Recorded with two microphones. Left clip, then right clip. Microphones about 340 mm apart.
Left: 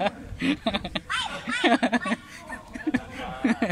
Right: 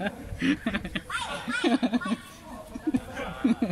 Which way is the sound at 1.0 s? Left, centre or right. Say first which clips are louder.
Left 3 dB; left.